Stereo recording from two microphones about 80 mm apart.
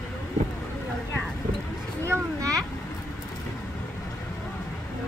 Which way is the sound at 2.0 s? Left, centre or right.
Right.